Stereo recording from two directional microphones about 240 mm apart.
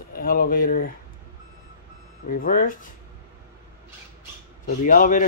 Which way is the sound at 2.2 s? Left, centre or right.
Left.